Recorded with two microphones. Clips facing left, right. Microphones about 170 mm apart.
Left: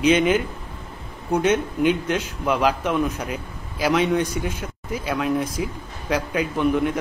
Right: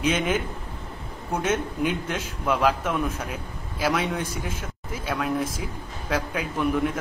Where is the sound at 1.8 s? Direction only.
80° left.